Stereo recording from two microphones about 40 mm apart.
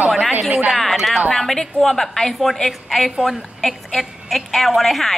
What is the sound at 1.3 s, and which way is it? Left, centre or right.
A woman's voice, centre.